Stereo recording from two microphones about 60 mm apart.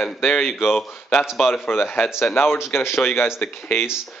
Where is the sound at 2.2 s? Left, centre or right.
Left.